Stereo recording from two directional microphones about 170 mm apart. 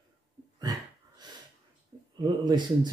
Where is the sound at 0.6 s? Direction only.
20° right (ahead or behind).